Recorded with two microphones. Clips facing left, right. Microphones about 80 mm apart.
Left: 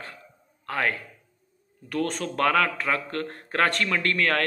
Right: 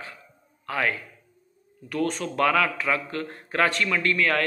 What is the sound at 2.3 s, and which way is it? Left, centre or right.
Speech, left.